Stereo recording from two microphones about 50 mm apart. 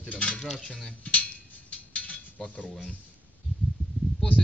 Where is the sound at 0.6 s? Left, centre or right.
Centre.